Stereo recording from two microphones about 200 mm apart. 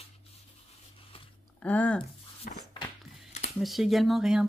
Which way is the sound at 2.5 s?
45° left (ahead or behind).